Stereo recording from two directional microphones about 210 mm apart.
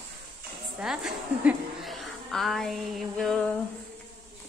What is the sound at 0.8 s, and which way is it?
A woman's voice, 5° right (ahead or behind).